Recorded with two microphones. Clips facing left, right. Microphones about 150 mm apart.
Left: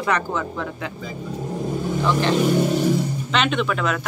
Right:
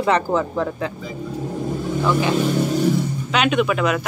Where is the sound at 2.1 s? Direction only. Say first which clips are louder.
Even; 10° right (ahead or behind).